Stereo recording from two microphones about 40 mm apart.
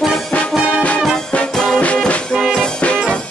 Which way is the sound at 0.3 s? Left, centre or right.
Left.